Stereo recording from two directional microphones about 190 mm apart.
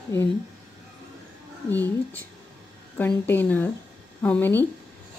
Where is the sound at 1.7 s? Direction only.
10° left (ahead or behind).